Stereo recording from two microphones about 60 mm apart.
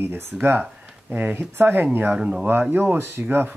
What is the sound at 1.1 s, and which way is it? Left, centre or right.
Speech, right.